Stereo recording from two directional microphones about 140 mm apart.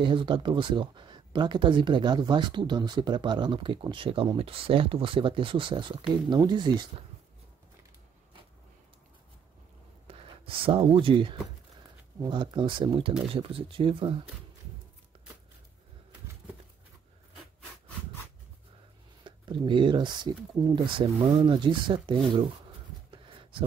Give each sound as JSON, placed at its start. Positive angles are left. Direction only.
{"t": 0.0, "sound": "speech", "side_deg": -35}
{"t": 10.0, "sound": "speech", "side_deg": -40}
{"t": 19.2, "sound": "speech", "side_deg": -35}